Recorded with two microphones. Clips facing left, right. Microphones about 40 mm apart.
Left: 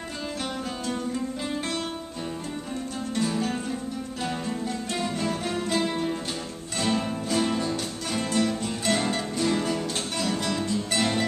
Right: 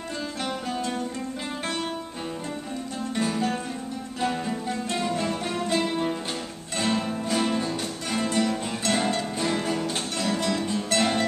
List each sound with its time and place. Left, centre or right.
3.2 s music: centre